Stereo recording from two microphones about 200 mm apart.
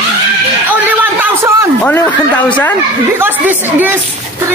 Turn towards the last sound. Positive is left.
turn(degrees=-10)  # may be behind; listen again after turning